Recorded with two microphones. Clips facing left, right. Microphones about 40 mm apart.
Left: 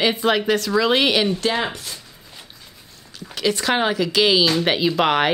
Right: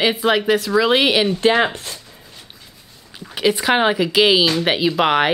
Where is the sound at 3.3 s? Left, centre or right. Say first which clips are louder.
Right 3 dB; centre.